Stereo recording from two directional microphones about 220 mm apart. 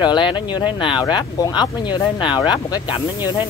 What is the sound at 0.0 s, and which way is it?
Speech, 20° left (ahead or behind).